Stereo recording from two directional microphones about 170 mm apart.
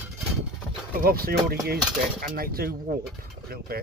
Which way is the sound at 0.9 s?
60° right (ahead or behind).